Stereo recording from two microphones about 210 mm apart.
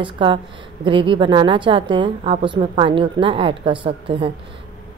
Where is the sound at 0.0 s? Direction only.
25° right (ahead or behind).